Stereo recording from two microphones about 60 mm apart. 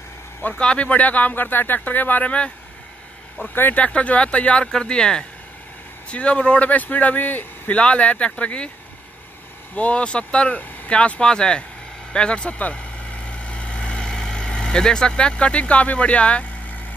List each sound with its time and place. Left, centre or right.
0.6 s speech: centre
3.7 s speech: left
9.8 s speech: left
12.1 s vehicle: centre